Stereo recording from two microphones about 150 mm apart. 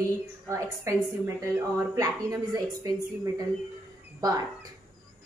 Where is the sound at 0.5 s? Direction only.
20° right (ahead or behind).